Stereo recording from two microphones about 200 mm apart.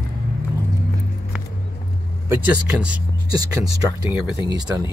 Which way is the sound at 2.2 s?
10° right (ahead or behind).